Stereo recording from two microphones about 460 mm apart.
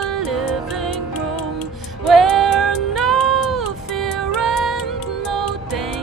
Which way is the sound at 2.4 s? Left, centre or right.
Right.